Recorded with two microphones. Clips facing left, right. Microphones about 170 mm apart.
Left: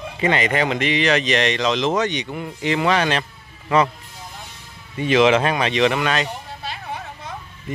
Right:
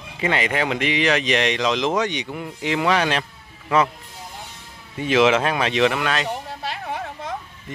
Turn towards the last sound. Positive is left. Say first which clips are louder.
# right 3 dB
turn(degrees=-90)